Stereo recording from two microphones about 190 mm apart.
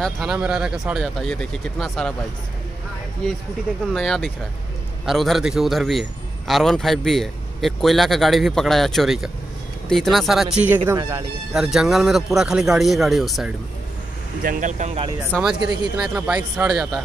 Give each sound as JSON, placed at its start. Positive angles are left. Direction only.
{"t": 0.0, "sound": "a man's voice", "side_deg": 0}
{"t": 3.8, "sound": "a man's voice", "side_deg": 0}
{"t": 10.9, "sound": "speech", "side_deg": -15}
{"t": 11.5, "sound": "a man's voice", "side_deg": 0}
{"t": 14.4, "sound": "speech", "side_deg": -45}
{"t": 16.0, "sound": "a man's voice", "side_deg": -5}